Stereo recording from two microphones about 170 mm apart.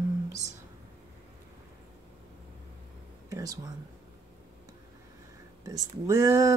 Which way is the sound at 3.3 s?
20° right (ahead or behind).